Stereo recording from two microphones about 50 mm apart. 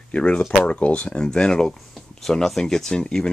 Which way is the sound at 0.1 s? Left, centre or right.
Left.